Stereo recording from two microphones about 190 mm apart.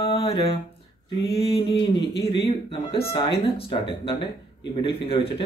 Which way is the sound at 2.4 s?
30° left (ahead or behind).